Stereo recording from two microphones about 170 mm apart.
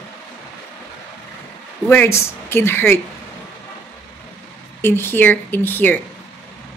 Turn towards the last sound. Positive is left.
turn(degrees=10)  # may be behind; listen again after turning